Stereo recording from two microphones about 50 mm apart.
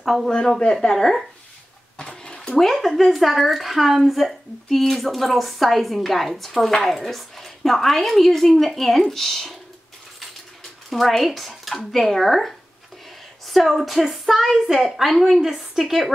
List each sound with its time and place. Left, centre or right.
0.0 s speech: centre
0.3 s speech: centre
0.9 s a woman's voice: centre
2.0 s a sound: centre
2.6 s a woman's voice: centre
10.6 s a woman's voice: centre